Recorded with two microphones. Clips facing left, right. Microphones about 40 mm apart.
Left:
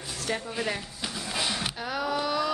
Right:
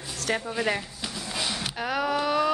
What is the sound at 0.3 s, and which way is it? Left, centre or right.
Speech, right.